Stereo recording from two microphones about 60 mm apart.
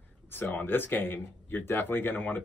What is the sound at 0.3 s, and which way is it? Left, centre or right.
Speech, left.